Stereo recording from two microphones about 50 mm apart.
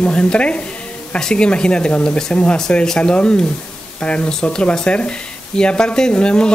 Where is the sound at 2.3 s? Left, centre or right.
Left.